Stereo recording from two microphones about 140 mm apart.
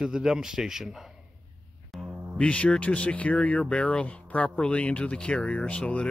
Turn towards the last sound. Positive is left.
turn(degrees=10)  # may be behind; listen again after turning